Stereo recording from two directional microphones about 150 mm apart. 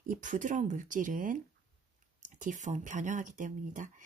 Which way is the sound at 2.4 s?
55° right (ahead or behind).